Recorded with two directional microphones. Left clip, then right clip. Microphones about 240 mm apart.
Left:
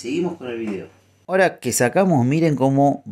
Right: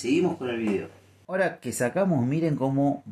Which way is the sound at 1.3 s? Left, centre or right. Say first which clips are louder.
Left 9 dB; left.